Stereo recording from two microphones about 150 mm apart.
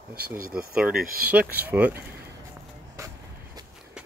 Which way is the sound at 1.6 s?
10° right (ahead or behind).